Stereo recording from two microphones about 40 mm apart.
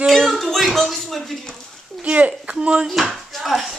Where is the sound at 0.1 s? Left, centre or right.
Centre.